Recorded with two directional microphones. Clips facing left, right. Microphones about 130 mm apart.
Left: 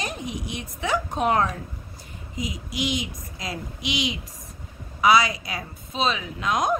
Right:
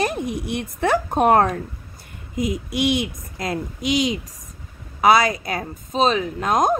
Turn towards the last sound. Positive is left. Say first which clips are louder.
# right 5 dB
turn(degrees=-45)  # may be behind; listen again after turning